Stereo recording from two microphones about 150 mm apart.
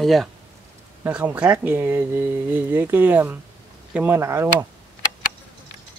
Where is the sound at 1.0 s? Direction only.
10° right (ahead or behind).